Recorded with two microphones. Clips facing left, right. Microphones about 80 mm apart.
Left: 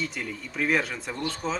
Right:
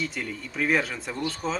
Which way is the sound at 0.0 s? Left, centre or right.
Centre.